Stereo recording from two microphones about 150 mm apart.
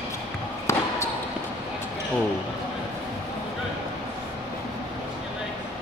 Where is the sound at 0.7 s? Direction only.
20° left (ahead or behind).